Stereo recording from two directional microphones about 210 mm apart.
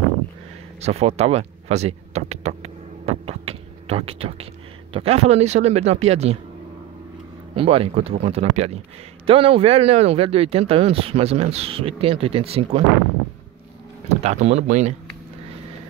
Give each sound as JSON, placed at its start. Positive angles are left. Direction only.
{"t": 0.7, "sound": "a sound", "side_deg": -30}
{"t": 4.9, "sound": "speech", "side_deg": -30}
{"t": 7.5, "sound": "speech", "side_deg": -25}
{"t": 14.0, "sound": "speech", "side_deg": -30}